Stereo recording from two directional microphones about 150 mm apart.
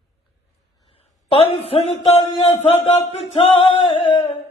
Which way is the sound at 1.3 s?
40° left (ahead or behind).